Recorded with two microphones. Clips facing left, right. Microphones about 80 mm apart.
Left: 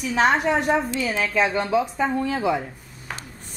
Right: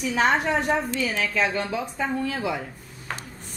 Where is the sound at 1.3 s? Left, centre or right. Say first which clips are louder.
Left 4 dB; centre.